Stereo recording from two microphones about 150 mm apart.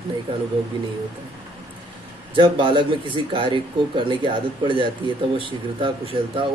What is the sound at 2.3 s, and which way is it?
Speech, 35° right (ahead or behind).